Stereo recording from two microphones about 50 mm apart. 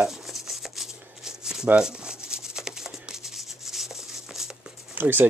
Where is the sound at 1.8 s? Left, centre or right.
Centre.